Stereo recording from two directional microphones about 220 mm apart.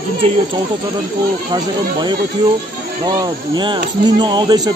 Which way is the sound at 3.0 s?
20° right (ahead or behind).